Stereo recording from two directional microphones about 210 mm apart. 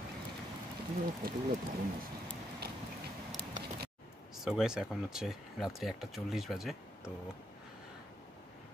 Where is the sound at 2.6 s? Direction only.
50° right (ahead or behind).